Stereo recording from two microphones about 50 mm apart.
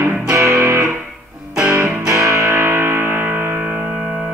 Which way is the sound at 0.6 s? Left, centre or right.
Right.